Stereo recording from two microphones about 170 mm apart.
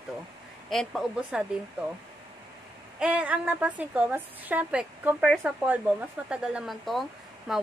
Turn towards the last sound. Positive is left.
turn(degrees=-5)  # may be behind; listen again after turning